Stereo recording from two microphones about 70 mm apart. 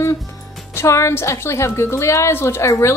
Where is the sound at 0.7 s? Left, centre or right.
Left.